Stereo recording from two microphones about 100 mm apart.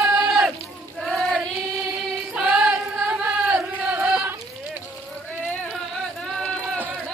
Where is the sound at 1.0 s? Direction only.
Centre (ahead or behind).